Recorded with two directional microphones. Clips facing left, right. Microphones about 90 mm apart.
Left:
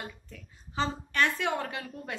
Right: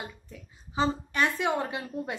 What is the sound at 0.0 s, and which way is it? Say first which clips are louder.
A woman's voice: right 1 dB; 15° right (ahead or behind).